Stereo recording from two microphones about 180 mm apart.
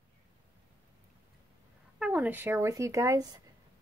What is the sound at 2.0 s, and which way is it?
Speech, 10° right (ahead or behind).